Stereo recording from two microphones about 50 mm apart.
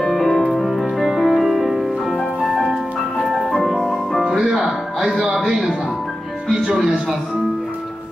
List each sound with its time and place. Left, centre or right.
0.0 s music: centre
4.3 s music: centre
5.2 s a man's voice: centre